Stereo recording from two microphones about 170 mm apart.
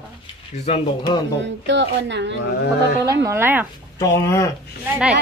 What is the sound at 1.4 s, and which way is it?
Speech, 90° right.